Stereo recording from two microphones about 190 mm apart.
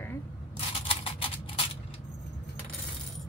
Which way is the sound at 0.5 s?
30° left (ahead or behind).